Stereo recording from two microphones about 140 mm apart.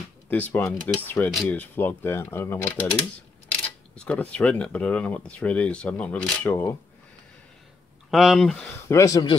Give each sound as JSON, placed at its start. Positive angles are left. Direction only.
{"t": 0.3, "sound": "speech", "side_deg": 15}
{"t": 8.1, "sound": "speech", "side_deg": 0}
{"t": 8.8, "sound": "speech", "side_deg": 20}